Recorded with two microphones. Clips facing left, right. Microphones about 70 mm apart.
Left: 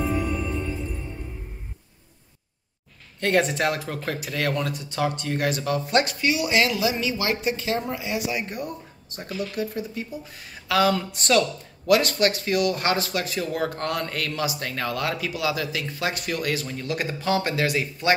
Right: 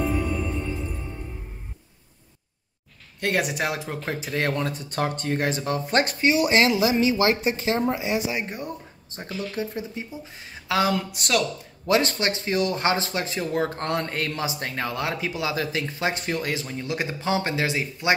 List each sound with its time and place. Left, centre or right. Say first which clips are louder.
0.0 s music: even; centre
3.2 s speech: left 3 dB; centre; by 5.4 s right
5.4 s speech: left 3 dB; right
11.1 s speech: left 6 dB; centre
11.8 s speech: left 2 dB; right